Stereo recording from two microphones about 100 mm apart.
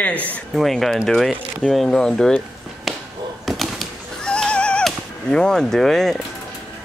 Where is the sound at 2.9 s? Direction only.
Centre (ahead or behind).